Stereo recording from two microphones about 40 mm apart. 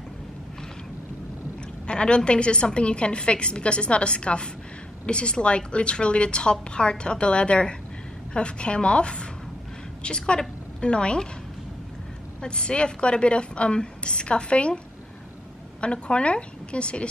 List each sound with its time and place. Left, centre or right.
1.9 s a woman's voice: left
12.4 s a woman's voice: left
15.8 s a woman's voice: left